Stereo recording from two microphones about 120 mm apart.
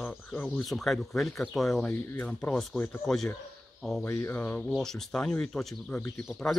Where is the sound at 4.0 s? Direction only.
25° left (ahead or behind).